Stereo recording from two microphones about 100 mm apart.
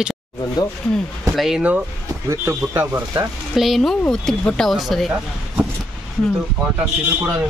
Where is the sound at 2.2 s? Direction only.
20° right (ahead or behind).